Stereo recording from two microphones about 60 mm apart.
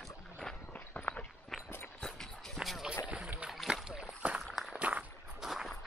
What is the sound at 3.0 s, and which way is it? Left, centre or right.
Rowboat, right.